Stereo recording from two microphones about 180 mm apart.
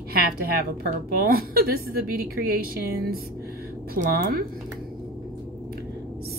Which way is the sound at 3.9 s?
55° right (ahead or behind).